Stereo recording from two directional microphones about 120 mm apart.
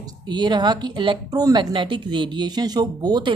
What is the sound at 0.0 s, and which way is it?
A woman's voice, 40° right (ahead or behind).